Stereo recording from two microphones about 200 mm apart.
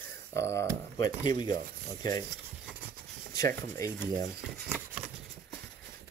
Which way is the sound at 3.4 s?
15° left (ahead or behind).